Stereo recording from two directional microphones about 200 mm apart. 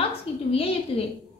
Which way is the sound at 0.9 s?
30° left (ahead or behind).